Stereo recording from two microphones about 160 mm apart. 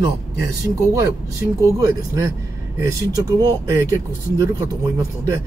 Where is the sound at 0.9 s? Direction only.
20° right (ahead or behind).